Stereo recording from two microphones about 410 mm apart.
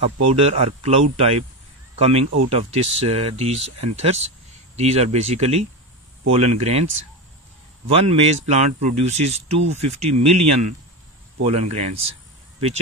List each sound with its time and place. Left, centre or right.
0.0 s a man's voice: centre
7.9 s speech: centre